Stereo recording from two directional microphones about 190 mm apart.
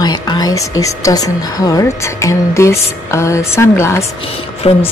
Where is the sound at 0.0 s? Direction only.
20° left (ahead or behind).